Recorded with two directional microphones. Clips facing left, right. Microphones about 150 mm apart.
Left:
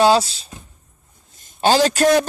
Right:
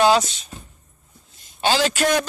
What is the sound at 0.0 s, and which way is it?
Speech, 30° left (ahead or behind).